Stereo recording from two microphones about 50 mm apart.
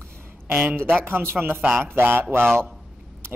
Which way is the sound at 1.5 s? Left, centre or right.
Right.